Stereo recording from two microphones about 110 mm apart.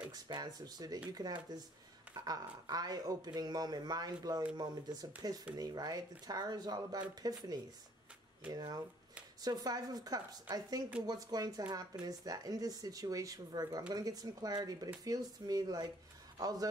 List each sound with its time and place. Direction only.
0.1 s a man's voice: 35° right (ahead or behind)